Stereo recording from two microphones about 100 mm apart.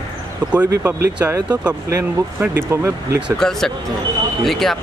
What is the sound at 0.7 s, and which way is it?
Speech, 25° right (ahead or behind).